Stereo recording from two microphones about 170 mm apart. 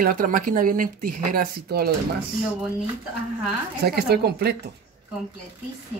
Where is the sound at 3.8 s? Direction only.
65° right (ahead or behind).